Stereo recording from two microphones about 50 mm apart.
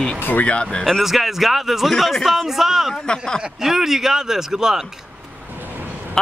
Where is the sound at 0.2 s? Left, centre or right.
Left.